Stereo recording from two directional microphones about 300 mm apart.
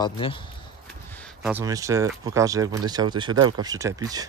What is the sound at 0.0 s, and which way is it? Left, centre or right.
Speech, centre.